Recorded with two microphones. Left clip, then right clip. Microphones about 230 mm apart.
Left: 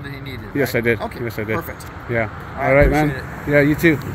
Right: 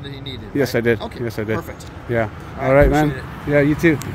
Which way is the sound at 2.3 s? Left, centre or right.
Right.